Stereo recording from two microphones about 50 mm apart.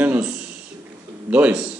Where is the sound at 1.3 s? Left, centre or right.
Right.